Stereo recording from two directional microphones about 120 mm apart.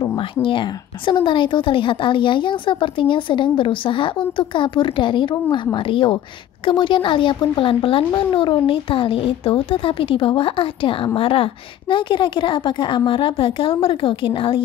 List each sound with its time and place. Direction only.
0.4 s a woman's voice: 45° left (ahead or behind)